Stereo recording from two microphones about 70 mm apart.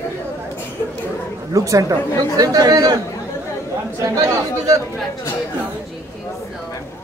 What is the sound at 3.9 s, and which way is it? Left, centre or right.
Speech, right.